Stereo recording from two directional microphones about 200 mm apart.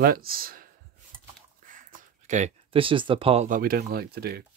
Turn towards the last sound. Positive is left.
turn(degrees=-50)  # may be behind; listen again after turning